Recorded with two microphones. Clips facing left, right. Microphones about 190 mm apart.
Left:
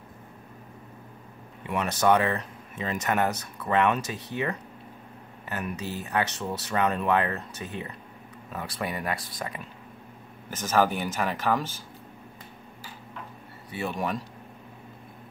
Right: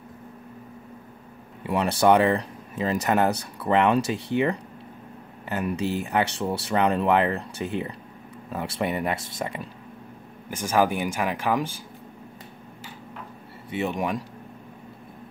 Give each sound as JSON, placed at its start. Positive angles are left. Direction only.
{"t": 1.6, "sound": "speech", "side_deg": -30}
{"t": 10.5, "sound": "speech", "side_deg": -10}
{"t": 13.7, "sound": "speech", "side_deg": -20}